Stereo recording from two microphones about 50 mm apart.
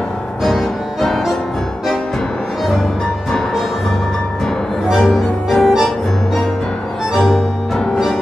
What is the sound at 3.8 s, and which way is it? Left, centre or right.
Music, centre.